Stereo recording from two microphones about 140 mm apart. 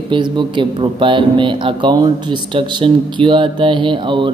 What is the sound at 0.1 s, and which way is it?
A man's voice, 35° right (ahead or behind).